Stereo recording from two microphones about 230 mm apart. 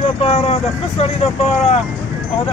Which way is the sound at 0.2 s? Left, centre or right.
Left.